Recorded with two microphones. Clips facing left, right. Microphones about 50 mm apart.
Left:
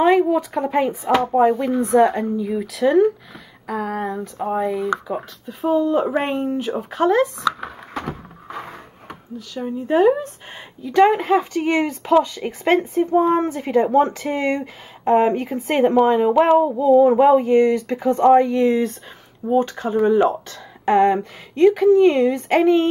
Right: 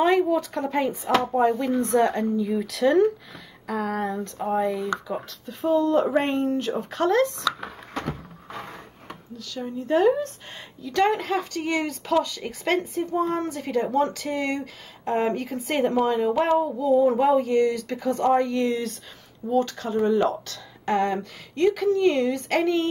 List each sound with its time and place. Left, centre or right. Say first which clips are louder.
0.0 s speech: left 5 dB; centre
4.8 s speech: left 5 dB; centre